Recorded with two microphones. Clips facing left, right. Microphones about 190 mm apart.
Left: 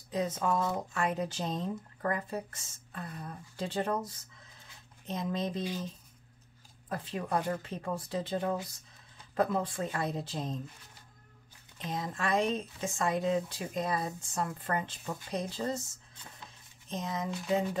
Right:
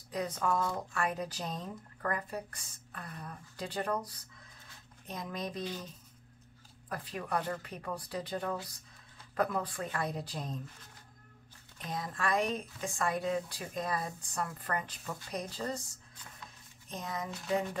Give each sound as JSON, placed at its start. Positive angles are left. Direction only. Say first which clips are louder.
{"t": 0.1, "sound": "speech", "louder": "left 2 dB", "side_deg": 25}
{"t": 6.9, "sound": "speech", "louder": "left 3 dB", "side_deg": 25}
{"t": 11.8, "sound": "speech", "louder": "left 1 dB", "side_deg": 25}
{"t": 16.9, "sound": "speech", "louder": "left 4 dB", "side_deg": 20}